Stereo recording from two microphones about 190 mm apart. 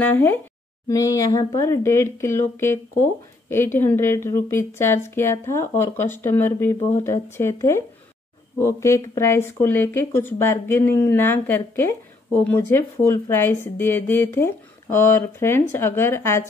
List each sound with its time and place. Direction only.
0.0 s speech: 10° left (ahead or behind)